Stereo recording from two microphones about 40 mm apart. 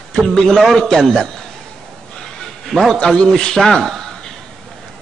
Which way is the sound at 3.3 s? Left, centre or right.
Centre.